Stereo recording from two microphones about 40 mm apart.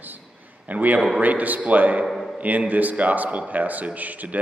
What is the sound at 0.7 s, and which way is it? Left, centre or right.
A man's voice, right.